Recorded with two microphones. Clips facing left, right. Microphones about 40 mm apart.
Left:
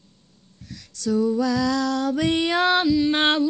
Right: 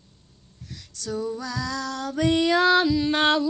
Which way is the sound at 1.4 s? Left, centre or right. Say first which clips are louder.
Left 8 dB; left.